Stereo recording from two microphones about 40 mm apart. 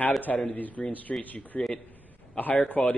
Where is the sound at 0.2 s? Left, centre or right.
Left.